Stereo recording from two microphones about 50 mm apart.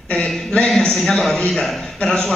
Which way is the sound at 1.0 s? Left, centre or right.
Centre.